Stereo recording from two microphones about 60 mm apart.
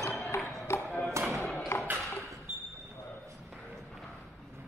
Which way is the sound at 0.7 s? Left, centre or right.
Left.